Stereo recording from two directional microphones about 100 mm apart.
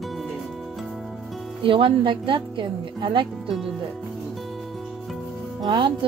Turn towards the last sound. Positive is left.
turn(degrees=-50)  # may be behind; listen again after turning